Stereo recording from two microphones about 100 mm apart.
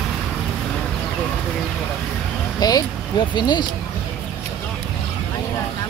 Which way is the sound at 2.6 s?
45° left (ahead or behind).